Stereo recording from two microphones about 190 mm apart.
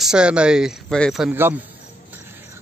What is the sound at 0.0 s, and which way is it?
Speech, 5° right (ahead or behind).